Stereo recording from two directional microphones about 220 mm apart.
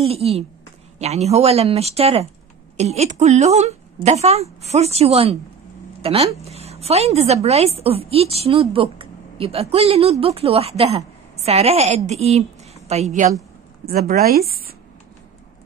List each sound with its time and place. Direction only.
0.0 s a woman's voice: 25° right (ahead or behind)
13.8 s a woman's voice: 45° right (ahead or behind)